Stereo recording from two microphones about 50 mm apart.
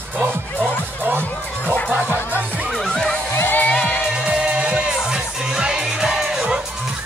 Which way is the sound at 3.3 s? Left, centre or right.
Left.